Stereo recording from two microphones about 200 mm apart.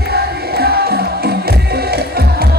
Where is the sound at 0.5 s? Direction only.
50° right (ahead or behind).